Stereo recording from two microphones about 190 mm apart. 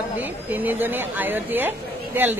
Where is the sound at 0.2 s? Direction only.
10° right (ahead or behind).